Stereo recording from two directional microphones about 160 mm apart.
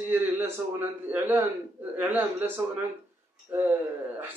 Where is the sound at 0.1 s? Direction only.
10° right (ahead or behind).